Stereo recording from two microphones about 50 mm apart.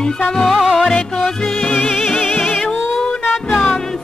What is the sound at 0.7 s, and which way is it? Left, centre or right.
Music, centre.